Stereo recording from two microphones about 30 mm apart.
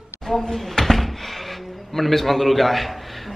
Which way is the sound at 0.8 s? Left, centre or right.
Centre.